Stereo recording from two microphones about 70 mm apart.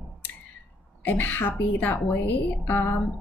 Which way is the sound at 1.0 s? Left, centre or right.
Left.